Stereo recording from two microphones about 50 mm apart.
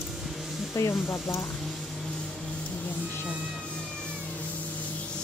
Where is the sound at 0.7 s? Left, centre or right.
Left.